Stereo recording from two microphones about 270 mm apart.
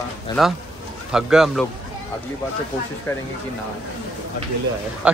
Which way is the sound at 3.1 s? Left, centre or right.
Centre.